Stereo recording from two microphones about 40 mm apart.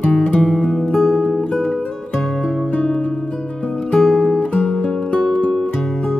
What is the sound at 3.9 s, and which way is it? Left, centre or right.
Music, centre.